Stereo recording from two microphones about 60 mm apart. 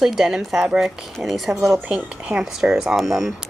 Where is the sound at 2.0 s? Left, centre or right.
Right.